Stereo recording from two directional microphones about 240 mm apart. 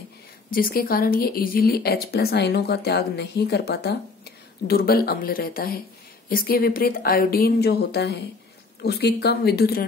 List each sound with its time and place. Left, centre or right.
0.5 s speech: left